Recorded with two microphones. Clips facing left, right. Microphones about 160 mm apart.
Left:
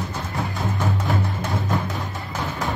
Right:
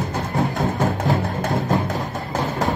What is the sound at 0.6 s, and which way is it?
Music, 45° right (ahead or behind).